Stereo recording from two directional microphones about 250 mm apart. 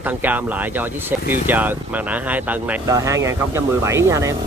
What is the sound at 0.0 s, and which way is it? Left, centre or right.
Speech, centre.